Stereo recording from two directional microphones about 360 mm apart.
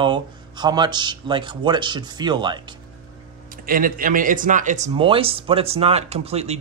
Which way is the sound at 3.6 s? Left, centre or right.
Right.